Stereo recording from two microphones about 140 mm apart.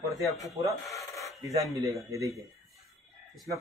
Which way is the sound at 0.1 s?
Centre (ahead or behind).